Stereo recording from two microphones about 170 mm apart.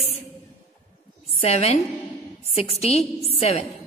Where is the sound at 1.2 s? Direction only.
40° left (ahead or behind).